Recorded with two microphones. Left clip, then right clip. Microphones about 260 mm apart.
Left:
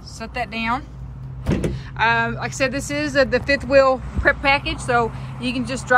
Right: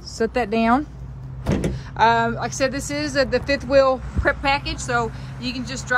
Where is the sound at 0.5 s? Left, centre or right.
Right.